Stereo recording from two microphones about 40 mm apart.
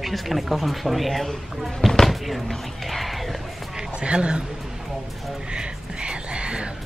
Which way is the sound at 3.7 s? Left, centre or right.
Right.